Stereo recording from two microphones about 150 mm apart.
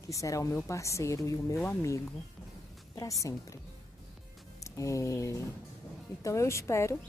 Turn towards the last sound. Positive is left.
turn(degrees=20)  # may be behind; listen again after turning